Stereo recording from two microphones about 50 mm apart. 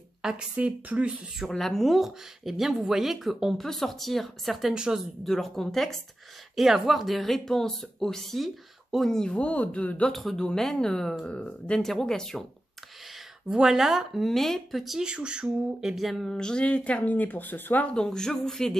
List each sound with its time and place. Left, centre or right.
0.2 s speech: centre
0.6 s speech: right
1.5 s speech: centre
4.7 s speech: centre
5.2 s speech: centre; by 10.0 s left
10.1 s speech: centre
13.5 s speech: centre
14.2 s speech: centre
15.0 s speech: centre
16.3 s speech: centre; by 17.8 s left
18.0 s speech: centre